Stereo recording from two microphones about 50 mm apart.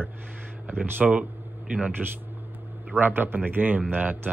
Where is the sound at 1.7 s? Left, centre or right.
Right.